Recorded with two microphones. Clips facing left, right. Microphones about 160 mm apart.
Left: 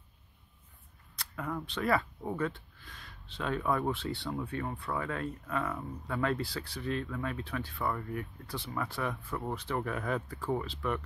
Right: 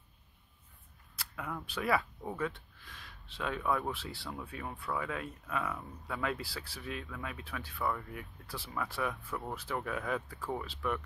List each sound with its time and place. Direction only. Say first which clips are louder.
1.1 s speech: left 4 dB; 5° right (ahead or behind)